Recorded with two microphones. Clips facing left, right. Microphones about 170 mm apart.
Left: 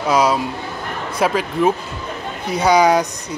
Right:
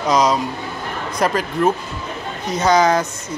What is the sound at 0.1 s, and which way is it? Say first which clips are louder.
Speech: even; 5° left (ahead or behind).